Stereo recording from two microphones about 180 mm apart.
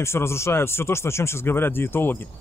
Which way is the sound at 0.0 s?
15° left (ahead or behind).